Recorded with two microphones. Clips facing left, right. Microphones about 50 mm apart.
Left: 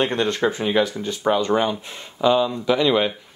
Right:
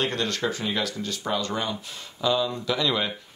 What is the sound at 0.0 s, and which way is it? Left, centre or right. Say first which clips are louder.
Speech: left 6 dB; left.